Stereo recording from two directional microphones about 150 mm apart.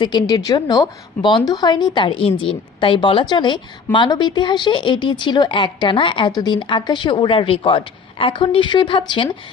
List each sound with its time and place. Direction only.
0.0 s a woman's voice: 30° left (ahead or behind)